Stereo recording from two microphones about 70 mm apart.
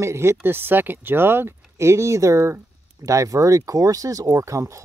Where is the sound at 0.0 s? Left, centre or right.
Right.